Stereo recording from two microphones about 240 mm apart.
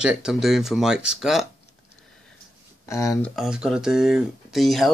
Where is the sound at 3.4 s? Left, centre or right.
Centre.